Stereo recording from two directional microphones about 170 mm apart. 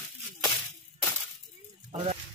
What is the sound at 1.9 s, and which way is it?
Speech, 35° right (ahead or behind).